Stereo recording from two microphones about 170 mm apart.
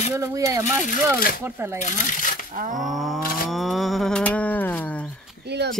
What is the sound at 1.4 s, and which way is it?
Speech, 15° right (ahead or behind).